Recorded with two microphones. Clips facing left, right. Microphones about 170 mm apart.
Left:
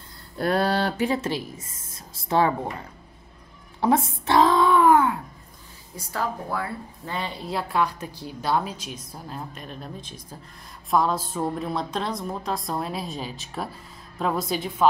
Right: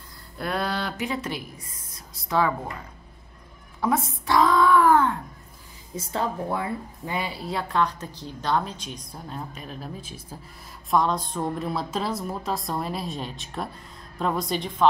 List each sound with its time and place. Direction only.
0.4 s speech: 30° left (ahead or behind)
3.8 s a sound: 30° left (ahead or behind); by 5.2 s 10° left (ahead or behind)
5.9 s a woman's voice: 20° right (ahead or behind); by 14.9 s 5° left (ahead or behind)